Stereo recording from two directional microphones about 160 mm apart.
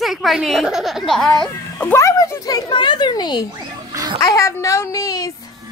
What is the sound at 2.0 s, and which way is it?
A child's voice, 20° left (ahead or behind).